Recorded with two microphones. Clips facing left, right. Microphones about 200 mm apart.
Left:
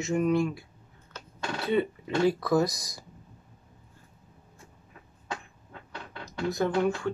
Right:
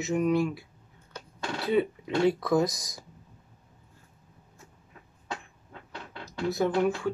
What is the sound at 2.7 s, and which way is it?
Speech, 60° left (ahead or behind).